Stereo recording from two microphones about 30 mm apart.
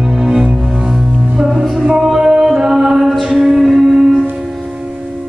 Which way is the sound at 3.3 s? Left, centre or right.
Centre.